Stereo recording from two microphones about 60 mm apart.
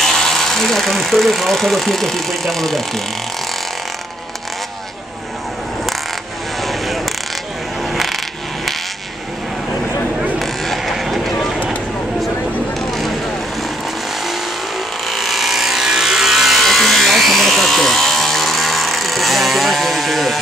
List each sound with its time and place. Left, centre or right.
0.0 s speech: centre
6.6 s mechanisms: centre
7.9 s coin: centre
10.4 s vehicle: centre
11.3 s a sound: left
15.0 s a sound: centre